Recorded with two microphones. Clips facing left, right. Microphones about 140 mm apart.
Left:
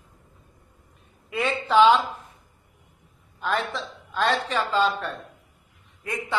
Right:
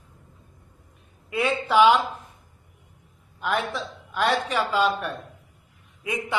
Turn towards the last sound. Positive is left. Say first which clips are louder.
# right 2 dB
turn(degrees=-15)  # may be behind; listen again after turning